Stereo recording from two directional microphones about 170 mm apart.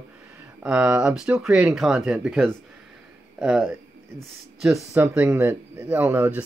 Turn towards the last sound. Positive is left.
turn(degrees=-10)  # may be behind; listen again after turning